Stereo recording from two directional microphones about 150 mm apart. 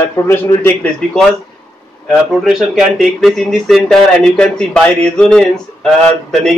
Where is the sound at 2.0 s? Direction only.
5° right (ahead or behind).